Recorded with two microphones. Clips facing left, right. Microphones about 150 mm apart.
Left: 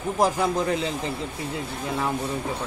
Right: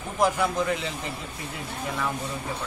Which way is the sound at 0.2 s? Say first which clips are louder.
Left 1 dB; 35° left (ahead or behind).